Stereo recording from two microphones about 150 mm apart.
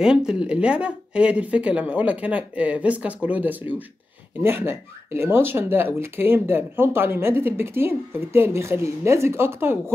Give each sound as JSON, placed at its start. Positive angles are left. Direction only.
{"t": 0.0, "sound": "speech", "side_deg": -5}